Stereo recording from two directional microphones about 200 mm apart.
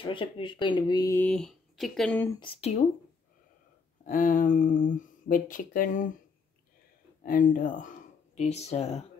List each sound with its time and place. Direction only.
0.0 s speech: 25° left (ahead or behind); by 2.2 s centre (ahead or behind)
2.4 s speech: 30° left (ahead or behind)
4.0 s speech: 40° left (ahead or behind)
7.2 s speech: 40° left (ahead or behind)